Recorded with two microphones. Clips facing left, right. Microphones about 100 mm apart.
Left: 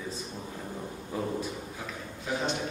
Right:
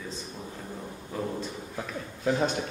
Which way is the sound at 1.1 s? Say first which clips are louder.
Even; 15° left (ahead or behind).